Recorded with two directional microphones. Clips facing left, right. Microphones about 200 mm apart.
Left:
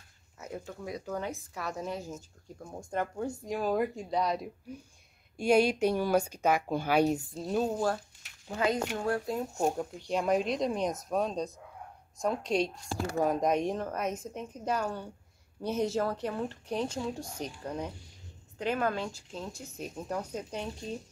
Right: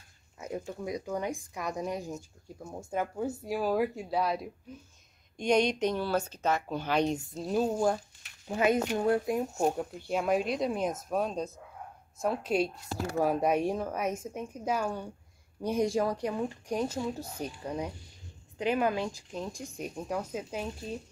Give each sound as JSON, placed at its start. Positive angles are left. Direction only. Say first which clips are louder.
{"t": 0.4, "sound": "speech", "louder": "right 4 dB", "side_deg": -15}
{"t": 5.4, "sound": "speech", "louder": "left 2 dB", "side_deg": 5}
{"t": 9.6, "sound": "speech", "louder": "right 1 dB", "side_deg": -5}